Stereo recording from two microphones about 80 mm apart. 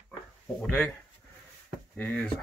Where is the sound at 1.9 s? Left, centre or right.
Centre.